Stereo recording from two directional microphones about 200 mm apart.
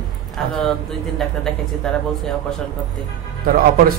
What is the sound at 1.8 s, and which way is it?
Speech, 5° left (ahead or behind).